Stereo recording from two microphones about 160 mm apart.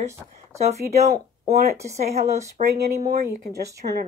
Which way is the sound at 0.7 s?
45° right (ahead or behind).